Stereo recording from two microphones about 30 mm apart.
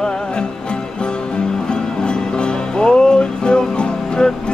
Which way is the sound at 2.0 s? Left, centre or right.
Left.